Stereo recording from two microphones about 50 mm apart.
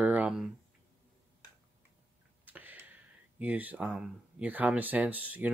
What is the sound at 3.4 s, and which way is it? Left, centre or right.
Speech, right.